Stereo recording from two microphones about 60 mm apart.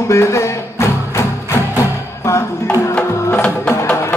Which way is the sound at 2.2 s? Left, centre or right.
Left.